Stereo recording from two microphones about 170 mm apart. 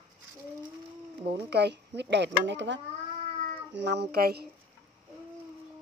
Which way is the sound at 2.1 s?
90° right.